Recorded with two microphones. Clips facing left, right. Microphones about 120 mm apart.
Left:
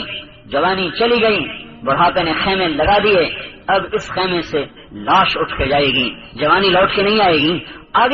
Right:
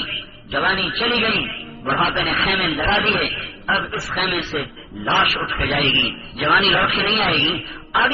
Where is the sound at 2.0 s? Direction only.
40° left (ahead or behind).